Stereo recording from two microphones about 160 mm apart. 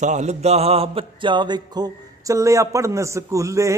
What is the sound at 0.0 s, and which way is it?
Mantra, 45° right (ahead or behind).